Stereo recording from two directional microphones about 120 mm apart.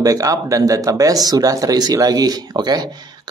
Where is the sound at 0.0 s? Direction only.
30° right (ahead or behind).